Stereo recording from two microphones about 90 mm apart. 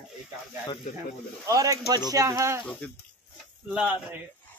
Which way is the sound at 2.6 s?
15° left (ahead or behind).